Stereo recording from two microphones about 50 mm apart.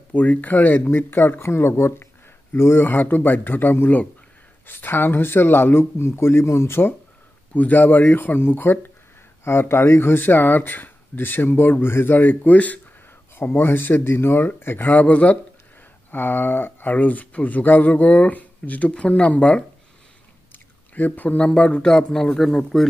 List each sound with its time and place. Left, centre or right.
0.1 s speech: left
2.8 s speech: left
7.5 s speech: left
9.4 s speech: left
12.5 s speech: left
13.6 s speech: left
14.9 s speech: left
16.1 s speech: left
16.9 s speech: left
20.5 s chewing: left
21.5 s speech: left
21.8 s speech: centre